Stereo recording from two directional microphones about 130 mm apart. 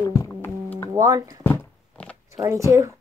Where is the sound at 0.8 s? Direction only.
25° right (ahead or behind).